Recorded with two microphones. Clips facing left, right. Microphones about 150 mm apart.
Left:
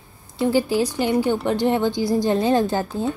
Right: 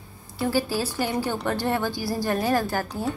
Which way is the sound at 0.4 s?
20° left (ahead or behind).